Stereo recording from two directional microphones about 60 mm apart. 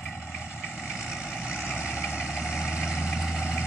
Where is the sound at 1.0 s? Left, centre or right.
Centre.